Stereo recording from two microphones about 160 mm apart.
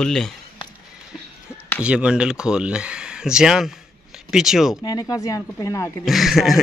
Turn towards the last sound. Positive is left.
turn(degrees=0)  # may be behind; listen again after turning